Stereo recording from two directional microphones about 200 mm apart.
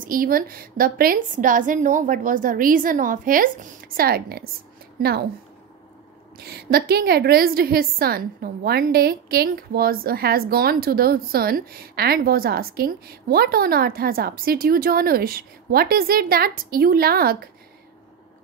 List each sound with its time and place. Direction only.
0.0 s a woman's voice: 45° right (ahead or behind)
6.3 s a woman's voice: 50° right (ahead or behind)